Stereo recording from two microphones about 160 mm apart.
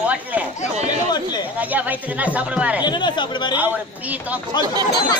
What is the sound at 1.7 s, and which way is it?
Speech, 10° right (ahead or behind).